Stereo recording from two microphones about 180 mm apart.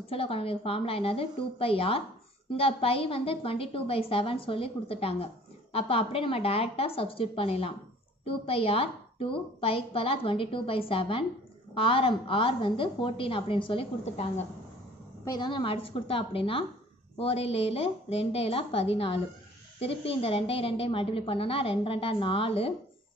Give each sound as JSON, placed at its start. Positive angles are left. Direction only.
{"t": 0.0, "sound": "a woman's voice", "side_deg": 30}
{"t": 15.2, "sound": "a woman's voice", "side_deg": 25}